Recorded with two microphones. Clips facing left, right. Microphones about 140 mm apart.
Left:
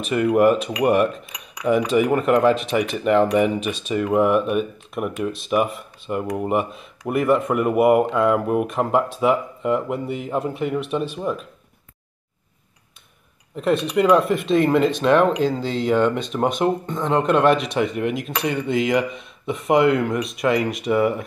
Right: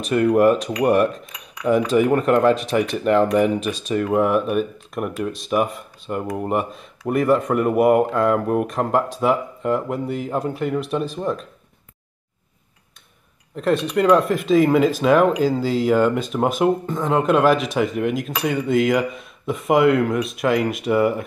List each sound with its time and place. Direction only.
0.0 s speech: 5° left (ahead or behind)
13.6 s speech: centre (ahead or behind)